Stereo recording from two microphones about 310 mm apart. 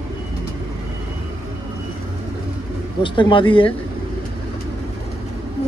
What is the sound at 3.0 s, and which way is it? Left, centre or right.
Speech, centre.